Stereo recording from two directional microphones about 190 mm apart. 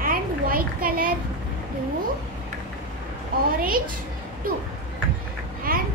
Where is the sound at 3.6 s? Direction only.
50° right (ahead or behind).